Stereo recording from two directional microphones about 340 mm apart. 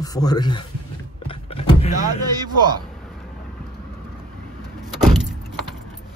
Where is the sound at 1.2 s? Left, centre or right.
Centre.